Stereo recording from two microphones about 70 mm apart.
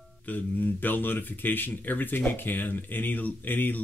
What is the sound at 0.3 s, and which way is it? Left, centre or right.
Speech, left.